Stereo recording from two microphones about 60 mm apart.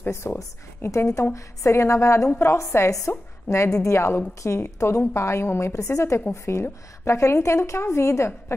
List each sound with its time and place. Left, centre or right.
0.0 s a woman's voice: left